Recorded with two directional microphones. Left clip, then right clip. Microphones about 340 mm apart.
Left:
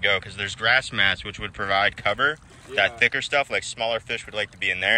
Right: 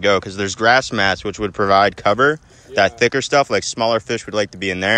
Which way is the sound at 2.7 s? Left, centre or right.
Centre.